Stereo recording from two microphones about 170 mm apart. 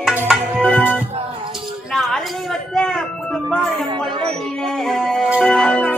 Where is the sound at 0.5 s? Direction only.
5° left (ahead or behind).